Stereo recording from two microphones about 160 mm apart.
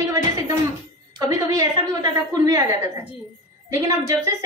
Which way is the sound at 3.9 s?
20° right (ahead or behind).